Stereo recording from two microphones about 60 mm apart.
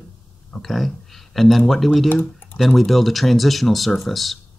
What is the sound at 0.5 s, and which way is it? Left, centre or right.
Speech, centre.